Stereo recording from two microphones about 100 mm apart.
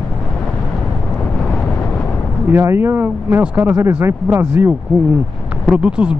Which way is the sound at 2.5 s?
25° right (ahead or behind).